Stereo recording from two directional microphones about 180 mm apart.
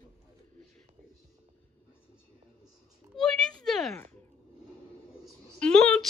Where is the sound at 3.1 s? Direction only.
5° left (ahead or behind).